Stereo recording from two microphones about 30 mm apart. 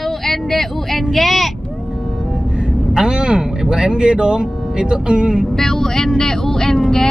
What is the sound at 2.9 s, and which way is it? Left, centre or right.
Speech, right.